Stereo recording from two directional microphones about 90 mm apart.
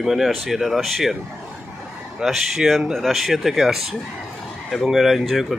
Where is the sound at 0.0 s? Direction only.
5° right (ahead or behind).